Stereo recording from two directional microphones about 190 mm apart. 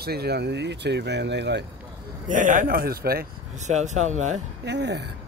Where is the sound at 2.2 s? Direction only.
40° right (ahead or behind).